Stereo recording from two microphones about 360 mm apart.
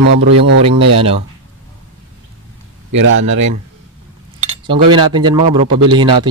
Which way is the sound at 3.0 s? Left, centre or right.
Right.